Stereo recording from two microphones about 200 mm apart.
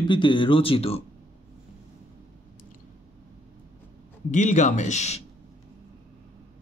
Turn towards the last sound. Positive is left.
turn(degrees=35)  # may be behind; listen again after turning